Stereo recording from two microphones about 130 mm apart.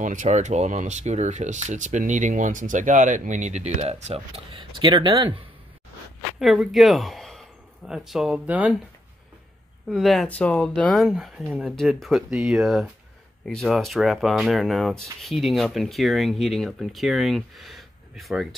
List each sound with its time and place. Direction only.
0.0 s speech: 75° right (ahead or behind); by 5.4 s 40° right (ahead or behind)
6.4 s speech: centre (ahead or behind)
9.8 s speech: centre (ahead or behind)